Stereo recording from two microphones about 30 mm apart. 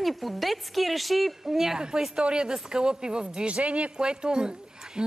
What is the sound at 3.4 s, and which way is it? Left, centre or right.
Speech, right.